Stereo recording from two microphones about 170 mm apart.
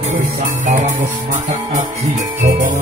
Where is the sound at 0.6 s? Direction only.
45° right (ahead or behind).